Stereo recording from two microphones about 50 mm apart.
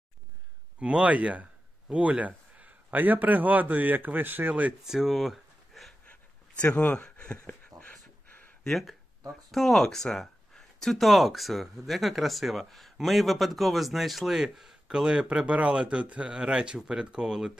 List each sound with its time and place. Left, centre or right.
0.7 s speech: right
4.8 s a sound: centre
6.0 s a sound: left
7.0 s speech: left
9.5 s speech: centre
14.9 s speech: centre